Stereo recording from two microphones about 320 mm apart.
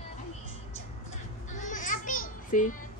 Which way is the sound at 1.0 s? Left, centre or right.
Left.